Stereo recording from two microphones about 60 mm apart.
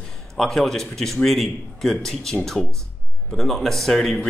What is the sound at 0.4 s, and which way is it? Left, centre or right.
Speech, centre.